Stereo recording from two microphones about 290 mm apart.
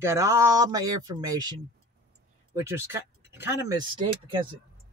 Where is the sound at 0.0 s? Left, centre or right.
Centre.